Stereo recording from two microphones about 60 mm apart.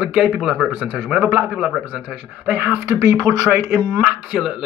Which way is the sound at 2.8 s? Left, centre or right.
Right.